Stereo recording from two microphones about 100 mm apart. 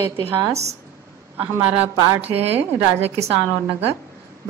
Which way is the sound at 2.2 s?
90° right.